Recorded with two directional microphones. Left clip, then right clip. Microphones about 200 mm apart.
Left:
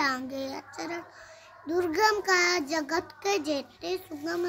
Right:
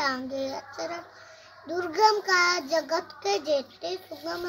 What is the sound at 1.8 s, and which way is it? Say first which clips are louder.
Child singing: right 2 dB; 25° left (ahead or behind).